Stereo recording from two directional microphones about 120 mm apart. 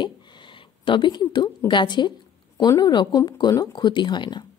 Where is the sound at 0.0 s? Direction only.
40° left (ahead or behind).